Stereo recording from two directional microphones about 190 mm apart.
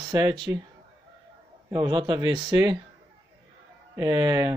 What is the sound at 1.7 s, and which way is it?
A man's voice, 25° right (ahead or behind).